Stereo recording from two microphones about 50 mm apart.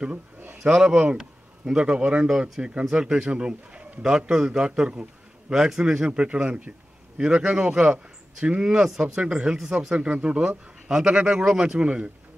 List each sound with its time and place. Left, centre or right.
0.7 s a man's voice: centre
5.5 s a man's voice: centre